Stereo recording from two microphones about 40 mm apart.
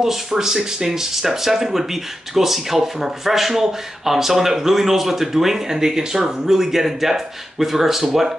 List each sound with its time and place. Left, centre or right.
0.0 s speech: centre